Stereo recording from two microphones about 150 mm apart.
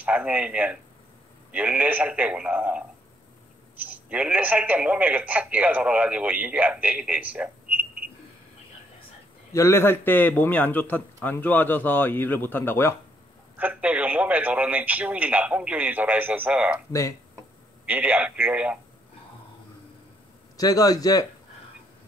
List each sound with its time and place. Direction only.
0.0 s speech: 10° right (ahead or behind)
9.5 s a man's voice: 20° left (ahead or behind)
13.6 s speech: 10° right (ahead or behind)
17.8 s speech: 10° right (ahead or behind)
20.5 s a man's voice: 25° left (ahead or behind)